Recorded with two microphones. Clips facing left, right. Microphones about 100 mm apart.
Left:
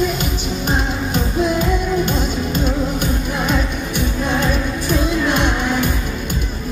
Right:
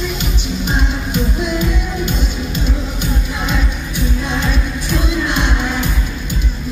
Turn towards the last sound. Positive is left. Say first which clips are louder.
# left 1 dB
turn(degrees=45)  # may be behind; listen again after turning